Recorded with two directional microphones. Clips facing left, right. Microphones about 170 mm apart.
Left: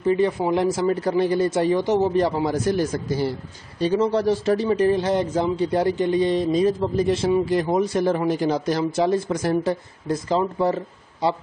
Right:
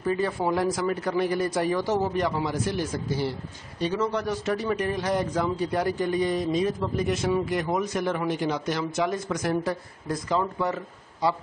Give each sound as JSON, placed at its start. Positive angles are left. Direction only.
{"t": 0.0, "sound": "a man's voice", "side_deg": 20}
{"t": 3.8, "sound": "a man's voice", "side_deg": 30}